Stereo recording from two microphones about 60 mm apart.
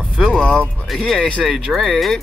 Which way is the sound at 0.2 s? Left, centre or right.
Centre.